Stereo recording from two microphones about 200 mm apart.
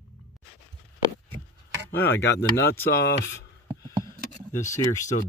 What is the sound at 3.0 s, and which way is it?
Speech, 60° left (ahead or behind).